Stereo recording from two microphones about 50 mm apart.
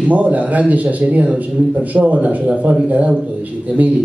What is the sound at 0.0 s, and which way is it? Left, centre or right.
A man's voice, right.